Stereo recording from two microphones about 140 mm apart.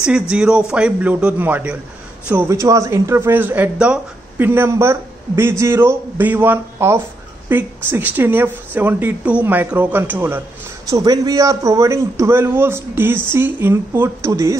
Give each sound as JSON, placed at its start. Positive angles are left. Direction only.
{"t": 0.0, "sound": "speech", "side_deg": -5}
{"t": 10.9, "sound": "a man's voice", "side_deg": -25}